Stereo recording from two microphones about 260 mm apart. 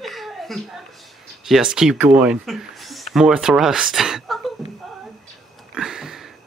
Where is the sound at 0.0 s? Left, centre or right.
Centre.